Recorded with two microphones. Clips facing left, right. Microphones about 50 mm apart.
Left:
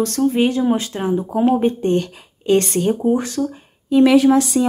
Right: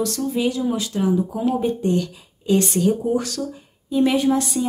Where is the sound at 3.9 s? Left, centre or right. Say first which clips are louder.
Left 6 dB; left.